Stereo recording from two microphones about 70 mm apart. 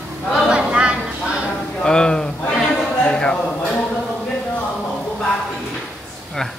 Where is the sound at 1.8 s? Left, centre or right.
Centre.